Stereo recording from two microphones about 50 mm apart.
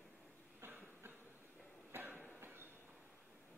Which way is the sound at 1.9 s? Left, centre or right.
Right.